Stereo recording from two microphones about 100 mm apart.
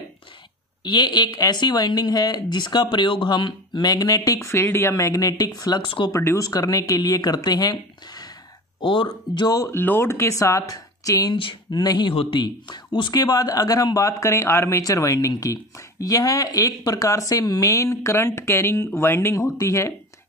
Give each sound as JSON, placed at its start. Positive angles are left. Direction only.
{"t": 0.8, "sound": "speech", "side_deg": 45}
{"t": 5.9, "sound": "speech", "side_deg": 55}
{"t": 6.1, "sound": "speech", "side_deg": 35}
{"t": 8.8, "sound": "speech", "side_deg": 55}
{"t": 9.7, "sound": "speech", "side_deg": 20}
{"t": 11.3, "sound": "speech", "side_deg": 60}
{"t": 11.8, "sound": "speech", "side_deg": 40}
{"t": 12.1, "sound": "speech", "side_deg": 60}